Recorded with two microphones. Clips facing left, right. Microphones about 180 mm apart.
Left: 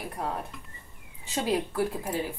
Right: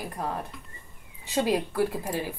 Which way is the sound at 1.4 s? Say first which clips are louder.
Even; 15° right (ahead or behind).